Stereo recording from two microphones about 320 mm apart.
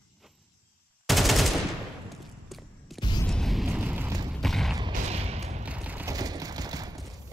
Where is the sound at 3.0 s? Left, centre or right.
Centre.